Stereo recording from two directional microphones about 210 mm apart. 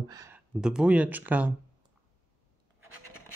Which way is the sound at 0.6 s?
5° right (ahead or behind).